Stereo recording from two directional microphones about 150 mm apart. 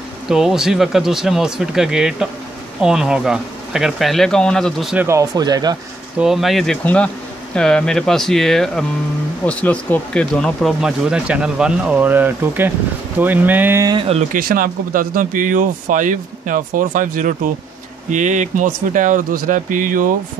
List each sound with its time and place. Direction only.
0.3 s speech: 5° right (ahead or behind)
4.9 s speech: 20° right (ahead or behind)
6.1 s speech: 5° right (ahead or behind)
13.9 s speech: 40° right (ahead or behind)
14.3 s speech: 70° right (ahead or behind)